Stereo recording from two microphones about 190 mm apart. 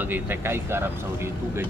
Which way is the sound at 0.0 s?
10° right (ahead or behind).